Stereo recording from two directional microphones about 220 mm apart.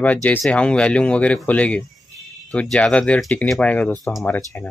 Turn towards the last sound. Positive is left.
turn(degrees=10)  # may be behind; listen again after turning